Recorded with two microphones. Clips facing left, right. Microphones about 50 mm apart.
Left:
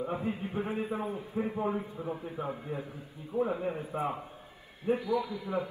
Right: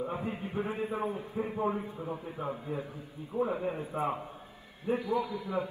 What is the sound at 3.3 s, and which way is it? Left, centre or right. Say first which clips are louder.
Speech: left 1 dB; centre.